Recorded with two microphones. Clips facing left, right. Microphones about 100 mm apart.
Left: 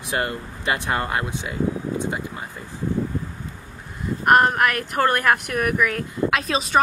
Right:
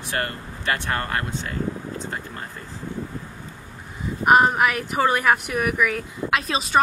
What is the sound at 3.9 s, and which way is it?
Speech, centre (ahead or behind).